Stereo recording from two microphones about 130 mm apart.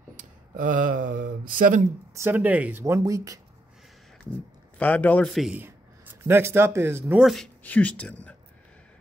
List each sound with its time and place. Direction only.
0.1 s speech: 90° right
2.1 s speech: 20° right (ahead or behind)
2.8 s speech: 25° right (ahead or behind)
4.7 s speech: 10° left (ahead or behind)
5.3 s a man's voice: centre (ahead or behind)
5.6 s speech: 15° right (ahead or behind)
7.2 s a man's voice: centre (ahead or behind)
7.6 s speech: 10° left (ahead or behind)